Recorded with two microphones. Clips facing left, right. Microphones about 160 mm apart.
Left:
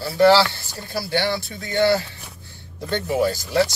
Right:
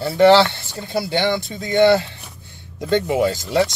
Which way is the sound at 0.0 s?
20° right (ahead or behind).